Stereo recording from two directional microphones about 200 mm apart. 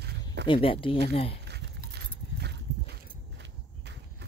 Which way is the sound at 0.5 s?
25° left (ahead or behind).